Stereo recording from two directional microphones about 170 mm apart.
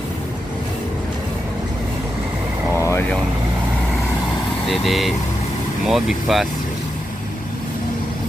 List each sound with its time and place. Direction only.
2.8 s vehicle: 15° left (ahead or behind)
4.6 s speech: centre (ahead or behind)